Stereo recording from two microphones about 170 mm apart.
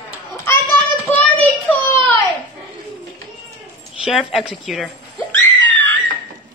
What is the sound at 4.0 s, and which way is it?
Speech, centre (ahead or behind).